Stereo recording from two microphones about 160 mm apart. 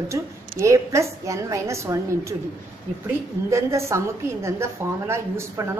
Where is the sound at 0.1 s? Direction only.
20° right (ahead or behind).